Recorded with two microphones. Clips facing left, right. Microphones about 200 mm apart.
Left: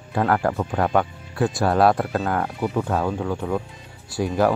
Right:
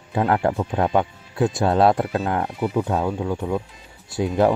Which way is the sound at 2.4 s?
Centre (ahead or behind).